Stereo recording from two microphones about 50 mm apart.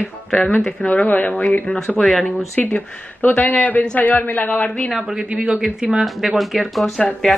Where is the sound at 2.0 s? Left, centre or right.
Centre.